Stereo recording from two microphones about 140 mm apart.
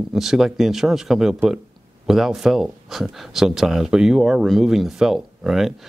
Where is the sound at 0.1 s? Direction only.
Centre (ahead or behind).